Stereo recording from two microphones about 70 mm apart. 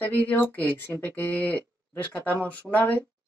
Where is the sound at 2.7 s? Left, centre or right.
Centre.